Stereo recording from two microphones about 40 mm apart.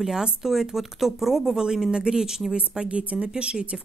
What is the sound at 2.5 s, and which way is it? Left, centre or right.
Speech, right.